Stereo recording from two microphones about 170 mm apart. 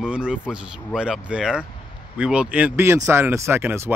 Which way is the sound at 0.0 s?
5° right (ahead or behind).